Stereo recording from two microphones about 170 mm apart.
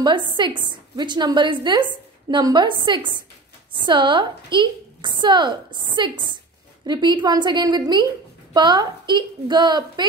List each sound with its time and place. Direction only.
0.0 s a woman's voice: 25° right (ahead or behind)